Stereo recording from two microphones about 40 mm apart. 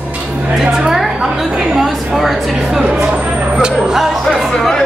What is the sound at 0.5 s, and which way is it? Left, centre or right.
A woman's voice, centre.